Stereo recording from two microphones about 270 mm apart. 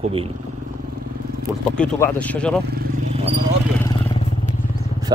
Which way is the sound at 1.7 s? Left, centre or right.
Centre.